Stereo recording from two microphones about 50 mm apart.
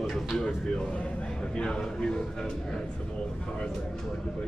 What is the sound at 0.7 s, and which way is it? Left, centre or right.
A man's voice, left.